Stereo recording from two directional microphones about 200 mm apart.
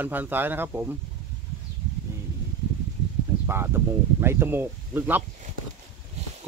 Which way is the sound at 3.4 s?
10° right (ahead or behind).